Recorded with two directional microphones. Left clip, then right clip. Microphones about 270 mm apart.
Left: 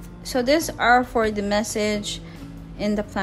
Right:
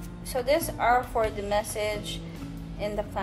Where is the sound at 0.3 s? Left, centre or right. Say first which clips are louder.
Left 5 dB; left.